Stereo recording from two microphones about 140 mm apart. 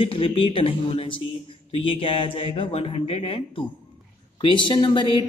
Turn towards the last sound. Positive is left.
turn(degrees=35)  # may be behind; listen again after turning